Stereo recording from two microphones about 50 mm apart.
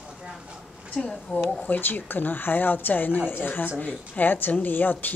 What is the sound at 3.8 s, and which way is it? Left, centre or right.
Speech, left.